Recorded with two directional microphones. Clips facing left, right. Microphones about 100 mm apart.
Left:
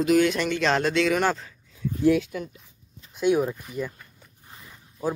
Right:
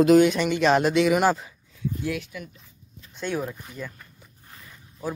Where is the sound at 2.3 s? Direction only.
45° left (ahead or behind).